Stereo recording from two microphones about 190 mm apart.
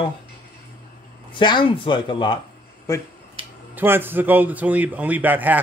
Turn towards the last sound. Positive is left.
turn(degrees=-10)  # may be behind; listen again after turning